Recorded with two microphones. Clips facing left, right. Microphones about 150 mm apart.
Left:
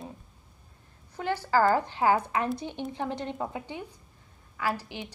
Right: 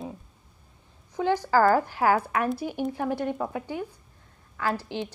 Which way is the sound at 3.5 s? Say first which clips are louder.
Right 5 dB; 20° left (ahead or behind).